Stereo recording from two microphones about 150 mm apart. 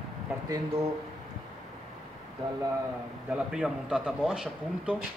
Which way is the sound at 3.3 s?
5° right (ahead or behind).